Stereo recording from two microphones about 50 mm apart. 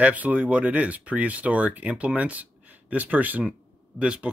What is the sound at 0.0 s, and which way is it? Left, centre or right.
Speech, right.